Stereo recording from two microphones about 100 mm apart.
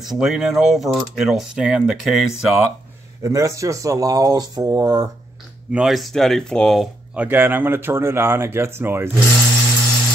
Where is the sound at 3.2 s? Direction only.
30° right (ahead or behind).